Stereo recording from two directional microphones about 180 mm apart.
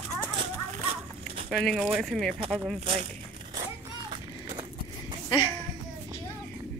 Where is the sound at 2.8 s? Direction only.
35° right (ahead or behind).